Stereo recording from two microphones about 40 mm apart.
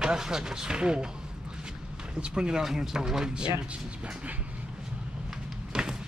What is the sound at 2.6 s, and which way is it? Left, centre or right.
Speech, centre.